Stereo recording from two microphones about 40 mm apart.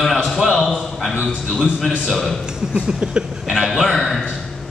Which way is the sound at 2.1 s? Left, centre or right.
Centre.